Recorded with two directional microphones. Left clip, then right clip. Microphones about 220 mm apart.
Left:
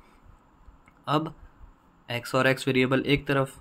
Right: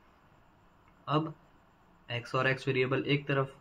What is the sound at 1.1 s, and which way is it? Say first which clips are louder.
Speech: left 5 dB; 45° left (ahead or behind).